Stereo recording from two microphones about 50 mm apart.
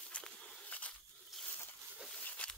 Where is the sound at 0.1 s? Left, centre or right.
Left.